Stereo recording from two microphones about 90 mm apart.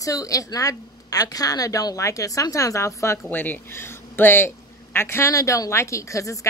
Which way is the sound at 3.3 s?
20° left (ahead or behind).